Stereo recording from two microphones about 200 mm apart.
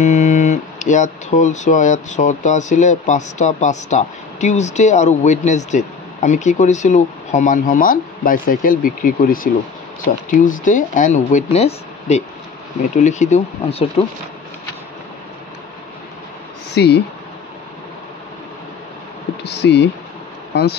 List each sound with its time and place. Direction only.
0.0 s speech: 35° left (ahead or behind)
16.7 s speech: 55° left (ahead or behind)
19.4 s speech: 55° left (ahead or behind)